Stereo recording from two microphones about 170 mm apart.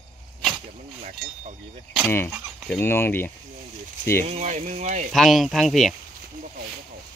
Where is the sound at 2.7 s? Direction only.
15° left (ahead or behind).